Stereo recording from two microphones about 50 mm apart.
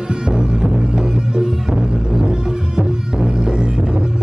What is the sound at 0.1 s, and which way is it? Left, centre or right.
Music, centre.